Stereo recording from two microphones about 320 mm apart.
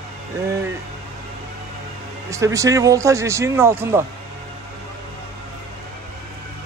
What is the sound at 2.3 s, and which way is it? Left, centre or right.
Speech, centre.